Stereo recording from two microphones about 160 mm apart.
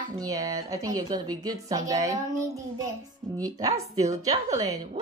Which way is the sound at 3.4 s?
20° right (ahead or behind).